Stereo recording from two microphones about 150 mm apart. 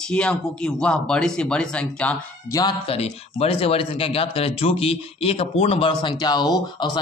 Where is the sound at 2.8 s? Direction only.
45° left (ahead or behind).